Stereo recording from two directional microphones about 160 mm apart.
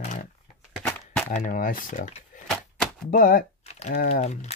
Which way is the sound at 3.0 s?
65° left (ahead or behind).